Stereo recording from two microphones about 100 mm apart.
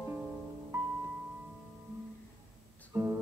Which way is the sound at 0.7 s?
30° right (ahead or behind).